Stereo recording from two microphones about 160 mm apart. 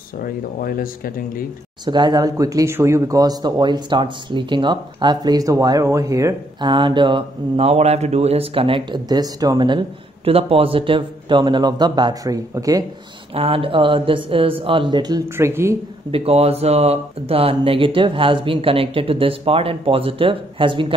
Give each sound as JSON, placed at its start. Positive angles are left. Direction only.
{"t": 0.2, "sound": "speech", "side_deg": 65}
{"t": 1.9, "sound": "speech", "side_deg": -25}
{"t": 13.3, "sound": "speech", "side_deg": -35}
{"t": 16.1, "sound": "speech", "side_deg": -40}